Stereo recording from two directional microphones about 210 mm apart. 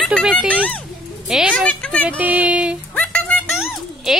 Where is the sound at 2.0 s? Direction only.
10° right (ahead or behind).